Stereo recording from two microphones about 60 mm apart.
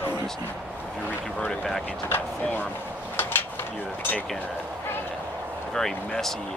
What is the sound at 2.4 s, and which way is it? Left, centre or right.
Speech, left.